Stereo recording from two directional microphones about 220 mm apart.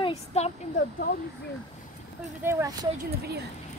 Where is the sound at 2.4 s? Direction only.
15° right (ahead or behind).